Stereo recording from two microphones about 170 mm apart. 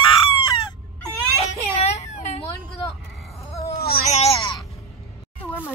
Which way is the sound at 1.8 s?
40° left (ahead or behind).